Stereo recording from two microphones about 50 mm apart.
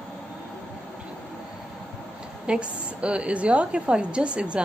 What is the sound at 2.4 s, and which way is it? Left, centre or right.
A woman's voice, right.